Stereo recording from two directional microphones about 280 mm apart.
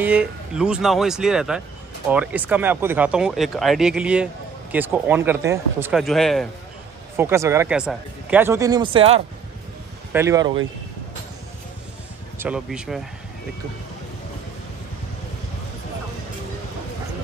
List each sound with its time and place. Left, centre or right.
0.0 s speech: centre
7.2 s speech: centre
12.4 s speech: centre